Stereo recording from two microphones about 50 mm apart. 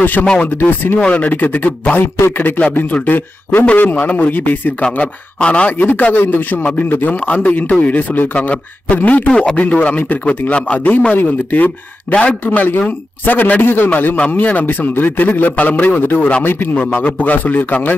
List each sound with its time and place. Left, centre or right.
0.0 s a man's voice: left
1.0 s a man's voice: left
2.1 s a man's voice: left
4.9 s speech: left
5.7 s a man's voice: left